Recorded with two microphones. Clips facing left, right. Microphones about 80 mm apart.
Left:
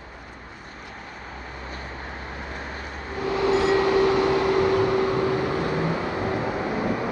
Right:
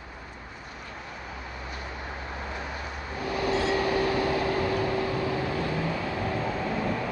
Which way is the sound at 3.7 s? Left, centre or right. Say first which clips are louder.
Left 6 dB; left.